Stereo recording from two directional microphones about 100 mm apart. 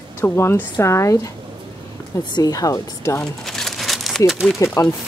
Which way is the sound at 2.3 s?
40° left (ahead or behind).